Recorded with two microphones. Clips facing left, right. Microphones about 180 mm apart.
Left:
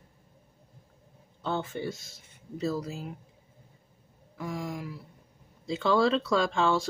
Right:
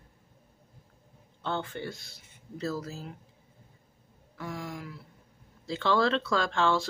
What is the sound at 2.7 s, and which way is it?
Speech, 15° left (ahead or behind).